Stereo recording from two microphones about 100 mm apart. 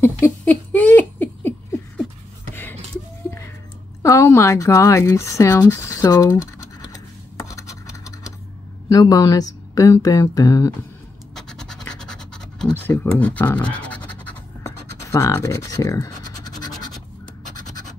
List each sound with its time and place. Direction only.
0.0 s rodents: 20° left (ahead or behind)
3.3 s a sound: 25° left (ahead or behind)
4.0 s speech: 30° left (ahead or behind)
6.9 s scratch: 30° left (ahead or behind)
8.8 s speech: 35° left (ahead or behind)
11.3 s scratch: 5° left (ahead or behind)
12.7 s speech: 20° left (ahead or behind)
13.7 s scratch: 15° left (ahead or behind)
14.6 s scratch: 30° left (ahead or behind)